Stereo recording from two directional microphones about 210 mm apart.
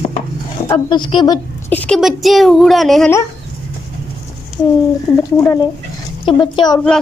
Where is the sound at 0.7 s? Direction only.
20° left (ahead or behind).